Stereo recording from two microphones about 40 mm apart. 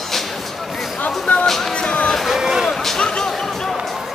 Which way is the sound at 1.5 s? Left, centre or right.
Centre.